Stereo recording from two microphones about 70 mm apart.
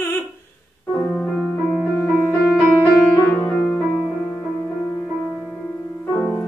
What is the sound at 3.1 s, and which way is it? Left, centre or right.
Music, left.